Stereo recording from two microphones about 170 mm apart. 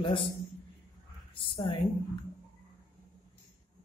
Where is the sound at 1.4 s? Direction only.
30° left (ahead or behind).